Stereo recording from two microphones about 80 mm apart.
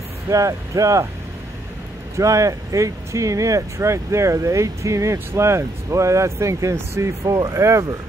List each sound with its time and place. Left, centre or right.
0.3 s speech: right
2.1 s speech: right
7.3 s speech: right